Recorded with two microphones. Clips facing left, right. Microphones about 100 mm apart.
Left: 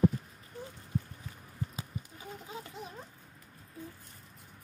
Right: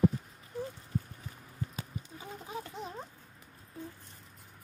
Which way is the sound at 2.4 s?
25° right (ahead or behind).